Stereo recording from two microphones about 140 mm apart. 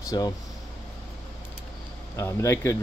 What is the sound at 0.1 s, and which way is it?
Speech, 30° left (ahead or behind).